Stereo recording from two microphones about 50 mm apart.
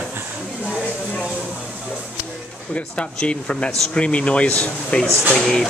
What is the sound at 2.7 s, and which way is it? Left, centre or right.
Speech, left.